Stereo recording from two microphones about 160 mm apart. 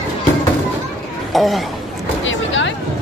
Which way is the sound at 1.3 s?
Centre (ahead or behind).